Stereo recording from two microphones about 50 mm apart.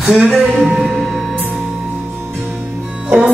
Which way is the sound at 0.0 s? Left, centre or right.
Centre.